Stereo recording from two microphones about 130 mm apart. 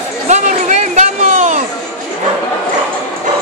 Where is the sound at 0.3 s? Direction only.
70° right (ahead or behind).